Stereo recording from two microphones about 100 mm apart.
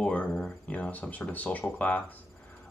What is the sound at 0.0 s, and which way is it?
Speech, 10° left (ahead or behind).